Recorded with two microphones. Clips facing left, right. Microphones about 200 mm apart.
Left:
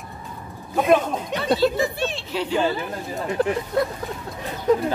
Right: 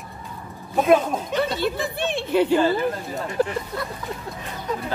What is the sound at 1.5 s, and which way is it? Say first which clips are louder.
Speech: left 4 dB; 55° right (ahead or behind).